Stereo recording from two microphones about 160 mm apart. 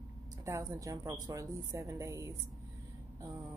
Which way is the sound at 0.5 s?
20° right (ahead or behind).